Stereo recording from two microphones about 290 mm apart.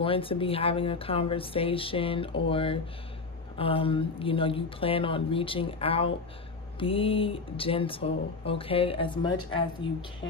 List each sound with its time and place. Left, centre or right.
0.0 s speech: centre